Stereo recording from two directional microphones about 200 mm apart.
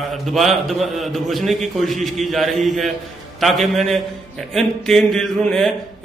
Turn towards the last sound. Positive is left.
turn(degrees=0)  # may be behind; listen again after turning